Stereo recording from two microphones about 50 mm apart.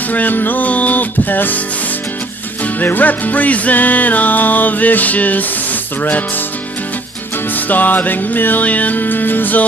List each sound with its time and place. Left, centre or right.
0.1 s music: left
2.6 s music: left
7.5 s music: left